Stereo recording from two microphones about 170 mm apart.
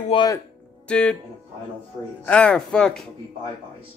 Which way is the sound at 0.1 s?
25° left (ahead or behind).